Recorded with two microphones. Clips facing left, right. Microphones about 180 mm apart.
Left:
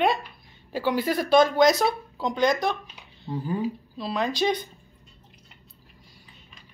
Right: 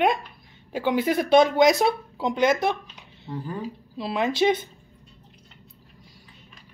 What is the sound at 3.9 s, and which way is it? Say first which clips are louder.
Speech: right 4 dB; 25° right (ahead or behind).